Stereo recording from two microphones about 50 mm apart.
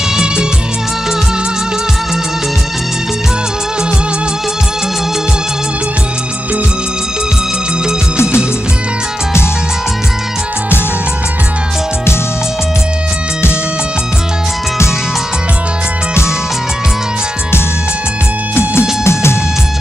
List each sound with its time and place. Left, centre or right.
0.1 s music: centre
18.5 s music: left